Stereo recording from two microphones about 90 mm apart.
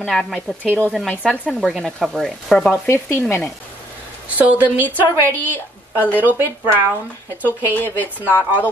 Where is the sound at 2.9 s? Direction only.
30° left (ahead or behind).